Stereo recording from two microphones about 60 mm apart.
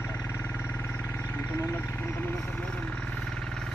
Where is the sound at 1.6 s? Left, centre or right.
Left.